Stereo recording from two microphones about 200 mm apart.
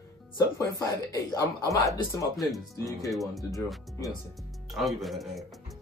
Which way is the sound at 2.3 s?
Centre (ahead or behind).